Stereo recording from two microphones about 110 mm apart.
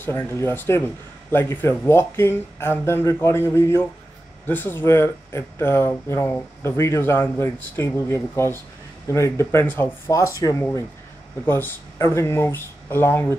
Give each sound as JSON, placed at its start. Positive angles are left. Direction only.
{"t": 0.0, "sound": "a man's voice", "side_deg": 20}